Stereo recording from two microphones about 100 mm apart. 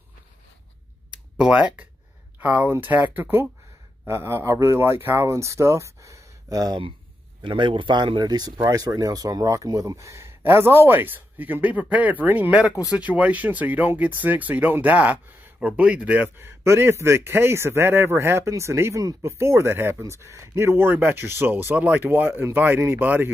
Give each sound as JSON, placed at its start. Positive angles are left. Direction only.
{"t": 1.4, "sound": "a man's voice", "side_deg": -5}
{"t": 7.4, "sound": "a man's voice", "side_deg": -55}
{"t": 12.6, "sound": "speech", "side_deg": 35}
{"t": 12.9, "sound": "speech", "side_deg": -15}
{"t": 16.3, "sound": "a man's voice", "side_deg": -25}